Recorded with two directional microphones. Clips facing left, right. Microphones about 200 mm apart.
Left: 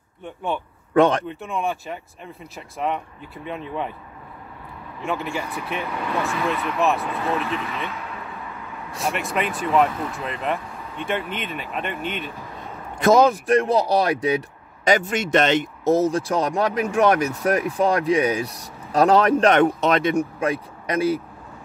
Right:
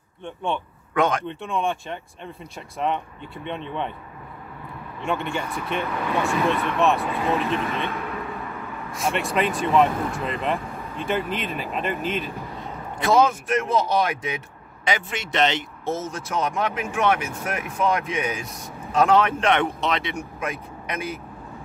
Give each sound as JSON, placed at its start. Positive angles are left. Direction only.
{"t": 0.2, "sound": "speech", "side_deg": 5}
{"t": 0.9, "sound": "speech", "side_deg": 35}
{"t": 1.2, "sound": "speech", "side_deg": 5}
{"t": 5.0, "sound": "speech", "side_deg": 0}
{"t": 9.1, "sound": "speech", "side_deg": 0}
{"t": 13.0, "sound": "speech", "side_deg": 40}
{"t": 14.9, "sound": "speech", "side_deg": 45}
{"t": 15.9, "sound": "speech", "side_deg": 35}
{"t": 20.3, "sound": "speech", "side_deg": 30}